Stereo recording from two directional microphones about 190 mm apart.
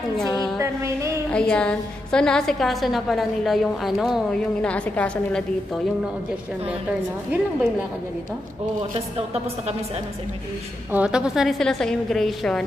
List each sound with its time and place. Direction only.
0.6 s music: 15° right (ahead or behind)
1.3 s a woman's voice: 5° left (ahead or behind)
8.9 s a woman's voice: 30° right (ahead or behind)
10.9 s a woman's voice: 5° right (ahead or behind)